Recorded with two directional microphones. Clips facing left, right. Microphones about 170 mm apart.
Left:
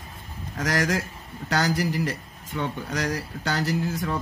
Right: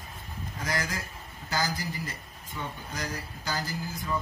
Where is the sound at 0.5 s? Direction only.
80° left.